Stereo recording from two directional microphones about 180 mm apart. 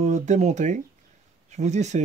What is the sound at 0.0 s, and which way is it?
Speech, 40° right (ahead or behind).